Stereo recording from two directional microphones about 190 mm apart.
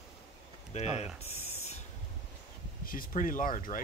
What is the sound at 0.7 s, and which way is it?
Speech, 35° left (ahead or behind).